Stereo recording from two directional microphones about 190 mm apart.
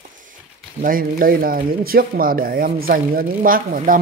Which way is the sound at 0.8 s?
50° right (ahead or behind).